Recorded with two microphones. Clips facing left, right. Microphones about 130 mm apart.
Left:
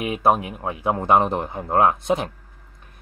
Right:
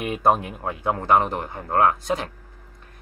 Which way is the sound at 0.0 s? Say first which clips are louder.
Left 1 dB; 5° left (ahead or behind).